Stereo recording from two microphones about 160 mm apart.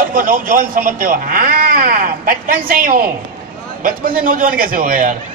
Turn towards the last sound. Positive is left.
turn(degrees=-60)  # may be behind; listen again after turning